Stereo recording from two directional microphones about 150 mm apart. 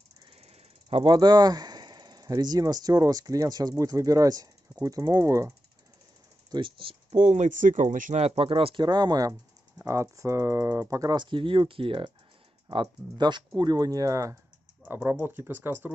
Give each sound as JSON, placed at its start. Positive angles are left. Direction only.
{"t": 0.4, "sound": "speech", "side_deg": -40}
{"t": 6.5, "sound": "speech", "side_deg": -35}
{"t": 7.2, "sound": "speech", "side_deg": -50}